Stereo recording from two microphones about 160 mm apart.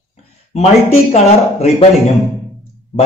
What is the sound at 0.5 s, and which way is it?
A man's voice, 40° left (ahead or behind).